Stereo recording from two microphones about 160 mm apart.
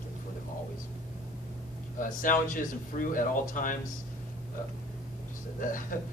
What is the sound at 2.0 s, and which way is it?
Speech, 55° left (ahead or behind).